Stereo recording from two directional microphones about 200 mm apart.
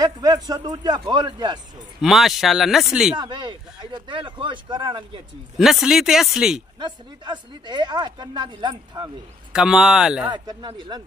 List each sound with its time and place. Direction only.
0.0 s speech: 20° right (ahead or behind)
2.0 s speech: centre (ahead or behind)
3.2 s speech: 25° right (ahead or behind)
5.6 s speech: centre (ahead or behind)
6.8 s speech: 20° right (ahead or behind)
9.5 s speech: 5° right (ahead or behind)
10.3 s speech: 20° right (ahead or behind)